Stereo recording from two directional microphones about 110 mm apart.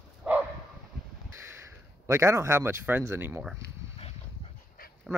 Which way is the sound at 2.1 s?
25° right (ahead or behind).